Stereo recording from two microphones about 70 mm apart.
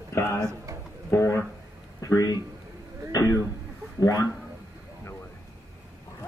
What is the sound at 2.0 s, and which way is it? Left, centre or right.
Speech, left.